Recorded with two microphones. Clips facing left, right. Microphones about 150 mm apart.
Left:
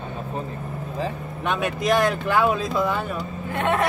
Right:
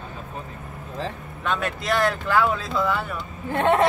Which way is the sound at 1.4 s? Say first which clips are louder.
Left 3 dB; 15° left (ahead or behind).